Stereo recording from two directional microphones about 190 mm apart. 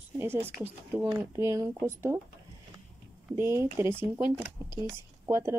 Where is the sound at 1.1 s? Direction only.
15° right (ahead or behind).